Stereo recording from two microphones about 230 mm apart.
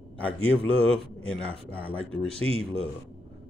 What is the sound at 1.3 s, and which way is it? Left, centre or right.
A man's voice, centre.